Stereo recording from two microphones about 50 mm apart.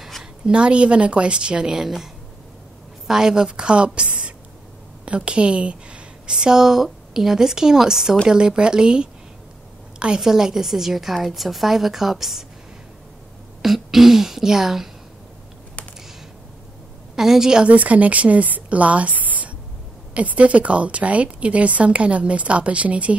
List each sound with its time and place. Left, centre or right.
0.0 s a sound: centre
0.5 s a woman's voice: right
3.1 s a woman's voice: centre
5.0 s whispering: right
6.3 s a woman's voice: centre
13.6 s speech: centre
17.1 s a woman's voice: centre
17.6 s a woman's voice: right